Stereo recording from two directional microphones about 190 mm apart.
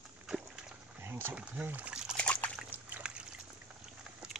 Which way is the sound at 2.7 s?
5° right (ahead or behind).